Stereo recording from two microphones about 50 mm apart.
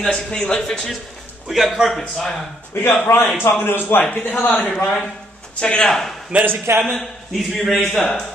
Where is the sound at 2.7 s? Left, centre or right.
Left.